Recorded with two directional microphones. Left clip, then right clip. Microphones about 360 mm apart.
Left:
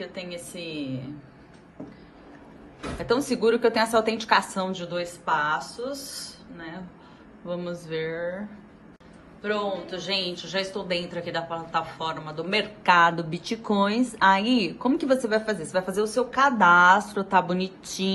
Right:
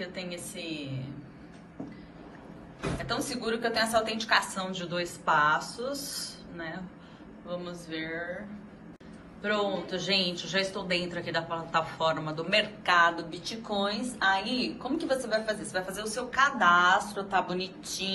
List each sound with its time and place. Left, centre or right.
0.0 s a woman's voice: centre
3.1 s a woman's voice: centre
7.4 s a woman's voice: centre
9.4 s a woman's voice: centre